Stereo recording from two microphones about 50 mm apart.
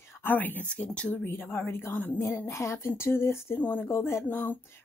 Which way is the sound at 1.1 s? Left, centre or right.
Left.